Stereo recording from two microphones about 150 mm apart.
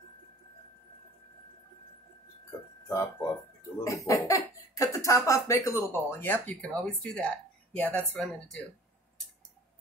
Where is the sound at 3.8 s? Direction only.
20° left (ahead or behind).